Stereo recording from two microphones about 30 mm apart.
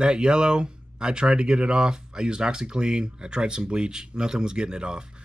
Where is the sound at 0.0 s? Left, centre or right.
Right.